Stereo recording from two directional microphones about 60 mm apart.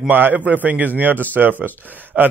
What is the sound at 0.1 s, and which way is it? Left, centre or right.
A man's voice, right.